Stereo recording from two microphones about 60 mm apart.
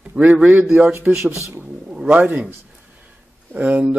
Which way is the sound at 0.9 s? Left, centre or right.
Right.